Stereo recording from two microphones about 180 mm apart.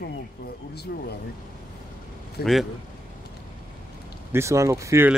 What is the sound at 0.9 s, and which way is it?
Speech, 60° left (ahead or behind).